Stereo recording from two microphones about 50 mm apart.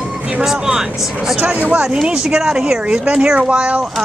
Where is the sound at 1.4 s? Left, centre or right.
Right.